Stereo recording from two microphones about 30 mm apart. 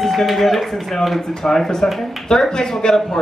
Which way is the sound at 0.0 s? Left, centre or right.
Centre.